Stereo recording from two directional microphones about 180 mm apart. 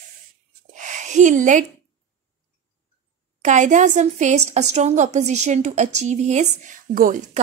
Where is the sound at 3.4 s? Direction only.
40° right (ahead or behind).